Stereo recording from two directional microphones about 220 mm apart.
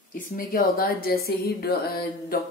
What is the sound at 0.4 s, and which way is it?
Speech, 40° left (ahead or behind).